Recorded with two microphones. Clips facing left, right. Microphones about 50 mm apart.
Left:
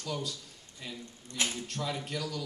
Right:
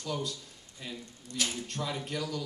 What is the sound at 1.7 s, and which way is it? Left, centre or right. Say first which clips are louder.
Speech: even; centre.